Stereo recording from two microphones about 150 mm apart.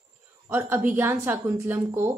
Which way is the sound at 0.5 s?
15° right (ahead or behind).